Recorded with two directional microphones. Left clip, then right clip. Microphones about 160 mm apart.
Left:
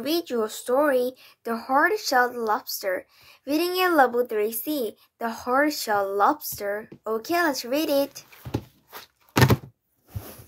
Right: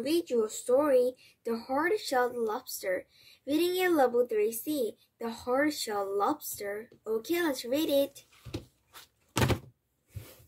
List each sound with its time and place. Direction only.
0.2 s a woman's voice: 15° right (ahead or behind)
4.5 s a child's voice: 45° left (ahead or behind)
5.2 s speech: 15° right (ahead or behind)
9.3 s a sound: 10° left (ahead or behind)